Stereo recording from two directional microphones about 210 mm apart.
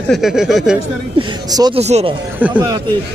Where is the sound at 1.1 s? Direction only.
20° right (ahead or behind).